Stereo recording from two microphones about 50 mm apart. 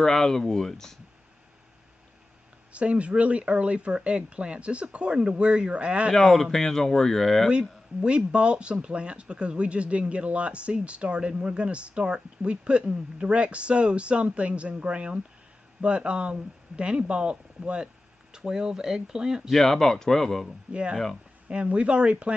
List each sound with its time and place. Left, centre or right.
0.0 s speech: centre
2.7 s speech: right
6.1 s speech: centre
8.0 s speech: right
19.5 s speech: centre
20.4 s speech: centre